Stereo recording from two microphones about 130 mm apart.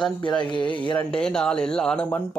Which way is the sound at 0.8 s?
10° left (ahead or behind).